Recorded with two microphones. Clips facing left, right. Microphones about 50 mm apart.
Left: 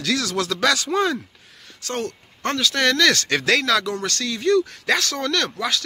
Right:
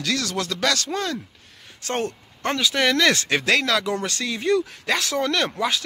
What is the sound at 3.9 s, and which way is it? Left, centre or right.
Speech, centre.